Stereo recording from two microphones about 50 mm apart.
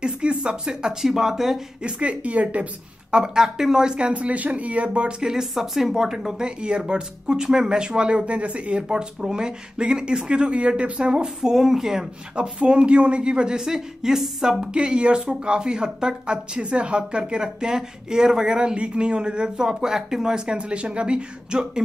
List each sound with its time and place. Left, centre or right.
0.0 s a sound: centre
1.0 s speech: centre
1.8 s a woman's voice: right
3.2 s speech: centre
4.1 s a woman's voice: right; by 12.1 s centre
12.4 s a woman's voice: centre
14.7 s speech: right